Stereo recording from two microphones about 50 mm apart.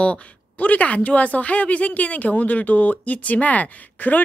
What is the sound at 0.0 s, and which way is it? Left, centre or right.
Speech, left.